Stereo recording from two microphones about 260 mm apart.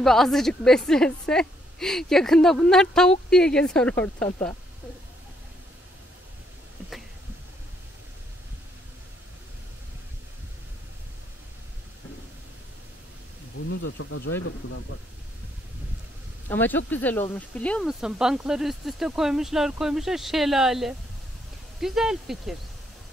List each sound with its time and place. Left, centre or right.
0.0 s a woman's voice: centre
13.7 s speech: left
16.4 s a woman's voice: centre